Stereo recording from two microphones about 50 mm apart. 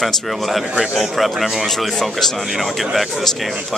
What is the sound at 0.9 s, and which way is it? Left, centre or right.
A man's voice, centre.